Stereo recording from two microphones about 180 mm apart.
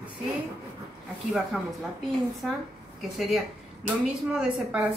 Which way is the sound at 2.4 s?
Centre (ahead or behind).